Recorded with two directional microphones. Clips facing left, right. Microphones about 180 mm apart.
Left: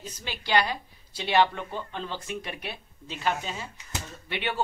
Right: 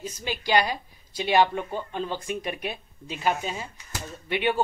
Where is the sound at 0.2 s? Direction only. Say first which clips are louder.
Right 2 dB; 15° right (ahead or behind).